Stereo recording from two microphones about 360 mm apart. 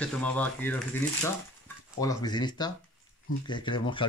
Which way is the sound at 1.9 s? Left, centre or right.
Centre.